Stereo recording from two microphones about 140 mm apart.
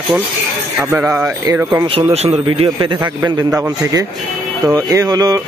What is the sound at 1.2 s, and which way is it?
Speech, 20° right (ahead or behind).